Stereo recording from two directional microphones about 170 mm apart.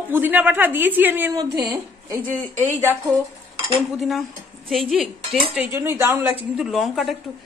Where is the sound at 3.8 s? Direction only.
Centre (ahead or behind).